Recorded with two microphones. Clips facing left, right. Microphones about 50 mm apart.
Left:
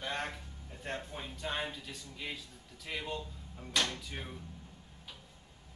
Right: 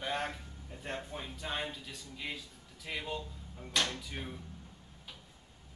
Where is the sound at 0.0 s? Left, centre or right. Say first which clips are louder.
Right 2 dB; centre.